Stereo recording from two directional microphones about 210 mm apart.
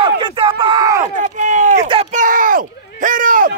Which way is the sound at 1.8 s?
25° right (ahead or behind).